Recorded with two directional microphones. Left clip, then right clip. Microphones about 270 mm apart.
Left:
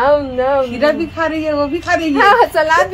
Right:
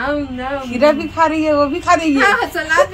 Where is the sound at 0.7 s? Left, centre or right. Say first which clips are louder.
Right 2 dB; right.